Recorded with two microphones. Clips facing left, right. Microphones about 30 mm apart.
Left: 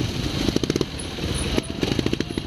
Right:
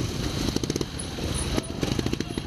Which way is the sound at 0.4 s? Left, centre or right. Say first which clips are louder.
Left 6 dB; left.